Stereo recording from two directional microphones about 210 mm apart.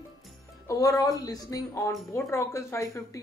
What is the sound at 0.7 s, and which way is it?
Speech, 15° left (ahead or behind).